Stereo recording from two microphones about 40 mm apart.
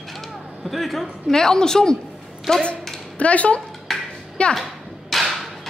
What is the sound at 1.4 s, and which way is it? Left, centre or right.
A woman's voice, centre.